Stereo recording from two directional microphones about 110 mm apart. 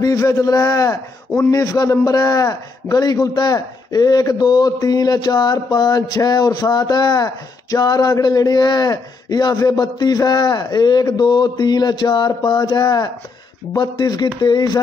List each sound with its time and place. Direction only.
0.0 s a man's voice: 30° left (ahead or behind)